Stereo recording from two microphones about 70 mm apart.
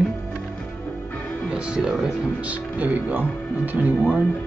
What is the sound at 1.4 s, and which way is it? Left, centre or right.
Music, centre.